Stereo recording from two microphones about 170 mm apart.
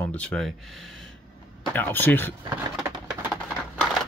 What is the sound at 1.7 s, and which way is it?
Speech, 10° left (ahead or behind).